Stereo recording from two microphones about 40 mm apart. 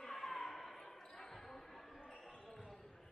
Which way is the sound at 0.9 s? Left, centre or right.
Centre.